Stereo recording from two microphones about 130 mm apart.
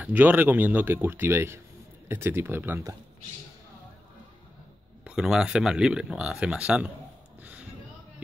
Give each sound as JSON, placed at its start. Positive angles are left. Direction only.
{"t": 0.0, "sound": "speech", "side_deg": -10}
{"t": 5.0, "sound": "speech", "side_deg": -5}